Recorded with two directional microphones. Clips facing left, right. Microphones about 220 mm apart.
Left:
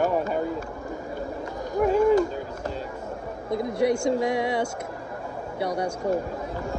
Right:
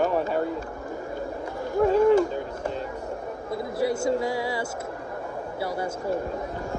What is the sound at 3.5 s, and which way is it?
Speech, 20° left (ahead or behind).